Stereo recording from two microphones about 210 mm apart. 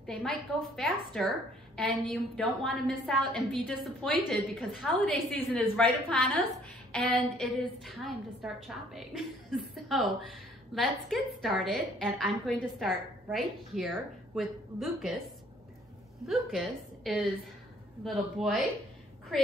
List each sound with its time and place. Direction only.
0.0 s a woman's voice: 5° left (ahead or behind)
16.3 s a woman's voice: centre (ahead or behind)